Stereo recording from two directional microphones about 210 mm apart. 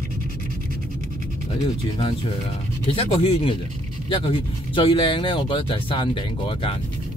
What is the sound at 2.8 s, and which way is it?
Speech, 25° left (ahead or behind).